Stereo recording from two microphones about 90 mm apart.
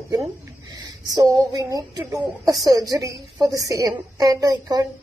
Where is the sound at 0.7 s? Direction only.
40° right (ahead or behind).